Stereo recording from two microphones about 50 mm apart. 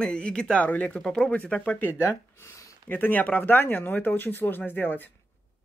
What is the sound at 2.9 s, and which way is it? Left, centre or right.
Speech, left.